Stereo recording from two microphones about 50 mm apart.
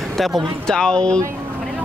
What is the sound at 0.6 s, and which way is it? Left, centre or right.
Speech, centre.